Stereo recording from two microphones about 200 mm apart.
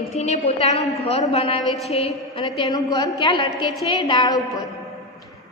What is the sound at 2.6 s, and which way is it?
A woman's voice, 20° left (ahead or behind).